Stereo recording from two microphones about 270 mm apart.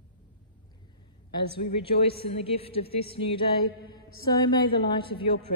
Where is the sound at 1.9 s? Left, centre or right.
Left.